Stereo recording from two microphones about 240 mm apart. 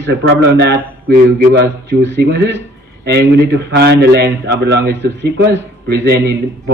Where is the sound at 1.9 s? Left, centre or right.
Right.